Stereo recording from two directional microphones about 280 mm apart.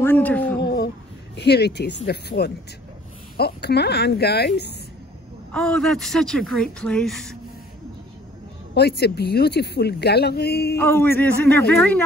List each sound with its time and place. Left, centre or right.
0.0 s a woman's voice: centre
0.6 s a sound: left
1.3 s speech: left
5.5 s a woman's voice: centre
9.0 s speech: left
10.8 s speech: centre